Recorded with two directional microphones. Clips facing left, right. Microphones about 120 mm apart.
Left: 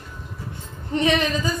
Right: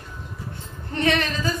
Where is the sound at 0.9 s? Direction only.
15° left (ahead or behind).